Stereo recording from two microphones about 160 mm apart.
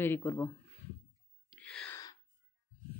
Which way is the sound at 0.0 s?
15° left (ahead or behind).